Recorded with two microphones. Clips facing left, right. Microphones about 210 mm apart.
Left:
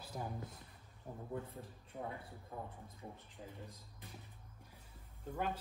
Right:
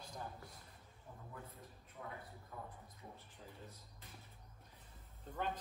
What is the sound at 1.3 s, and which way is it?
Speech, 30° left (ahead or behind).